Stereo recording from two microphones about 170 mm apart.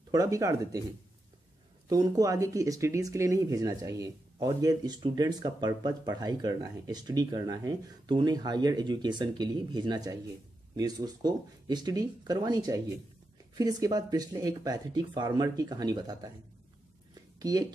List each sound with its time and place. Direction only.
0.1 s speech: 20° right (ahead or behind)
1.9 s speech: 20° right (ahead or behind)
17.1 s a sound: 20° right (ahead or behind)